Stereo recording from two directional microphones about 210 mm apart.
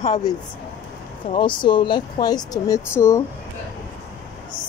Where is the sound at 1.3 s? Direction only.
20° left (ahead or behind).